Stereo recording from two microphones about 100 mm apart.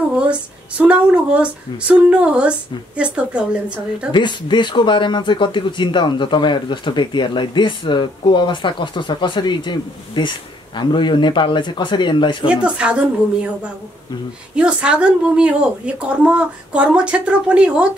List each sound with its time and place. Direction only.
0.1 s speech: 10° right (ahead or behind)
4.1 s speech: 50° left (ahead or behind)
12.4 s speech: 10° right (ahead or behind)
14.5 s speech: 10° right (ahead or behind)